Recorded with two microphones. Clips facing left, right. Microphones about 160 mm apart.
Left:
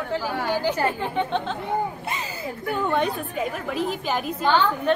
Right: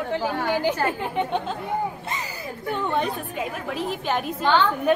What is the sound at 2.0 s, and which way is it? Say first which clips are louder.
Speech: left 1 dB; 15° left (ahead or behind).